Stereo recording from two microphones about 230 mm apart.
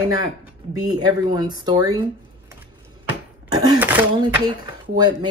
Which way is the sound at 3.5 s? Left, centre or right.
Centre.